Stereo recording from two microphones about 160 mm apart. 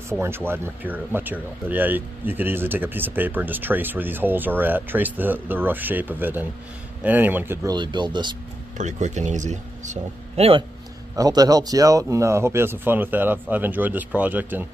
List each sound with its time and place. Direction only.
0.2 s speech: 15° right (ahead or behind)
7.7 s speech: 30° right (ahead or behind)
8.7 s speech: 50° right (ahead or behind)
11.1 s speech: 25° right (ahead or behind)